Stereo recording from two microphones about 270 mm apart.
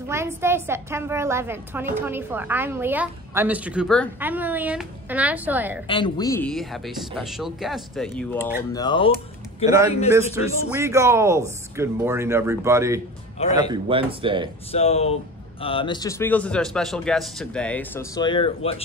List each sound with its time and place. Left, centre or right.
0.1 s a woman's voice: centre
5.9 s speech: centre
8.7 s a man's voice: centre
10.1 s a woman's voice: centre
14.7 s a man's voice: left